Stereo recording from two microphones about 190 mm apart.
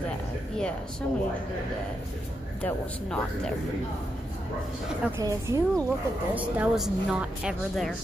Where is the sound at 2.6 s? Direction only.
5° left (ahead or behind).